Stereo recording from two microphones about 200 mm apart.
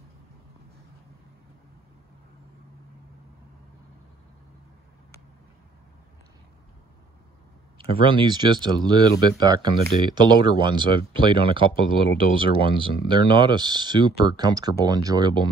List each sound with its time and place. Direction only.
8.0 s speech: 25° right (ahead or behind)